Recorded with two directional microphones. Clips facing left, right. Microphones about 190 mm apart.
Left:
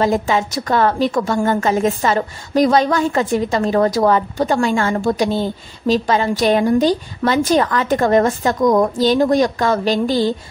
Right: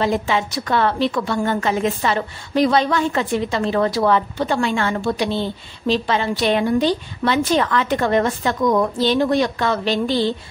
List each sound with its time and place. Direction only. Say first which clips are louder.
0.0 s a woman's voice: left 3 dB; 45° left (ahead or behind)